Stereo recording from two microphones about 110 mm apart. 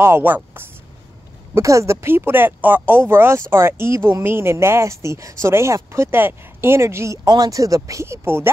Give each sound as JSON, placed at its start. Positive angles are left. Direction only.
{"t": 0.0, "sound": "speech", "side_deg": -20}
{"t": 7.2, "sound": "speech", "side_deg": -35}